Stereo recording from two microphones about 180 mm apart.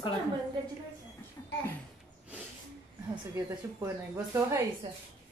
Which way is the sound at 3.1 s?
15° right (ahead or behind).